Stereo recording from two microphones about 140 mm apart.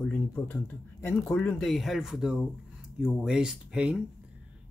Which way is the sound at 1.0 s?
10° left (ahead or behind).